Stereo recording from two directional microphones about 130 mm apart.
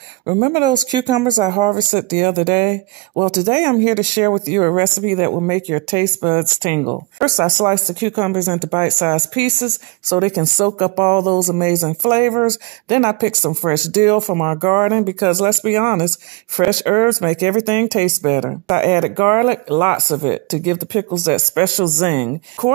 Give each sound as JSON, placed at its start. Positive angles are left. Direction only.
{"t": 0.4, "sound": "speech", "side_deg": -35}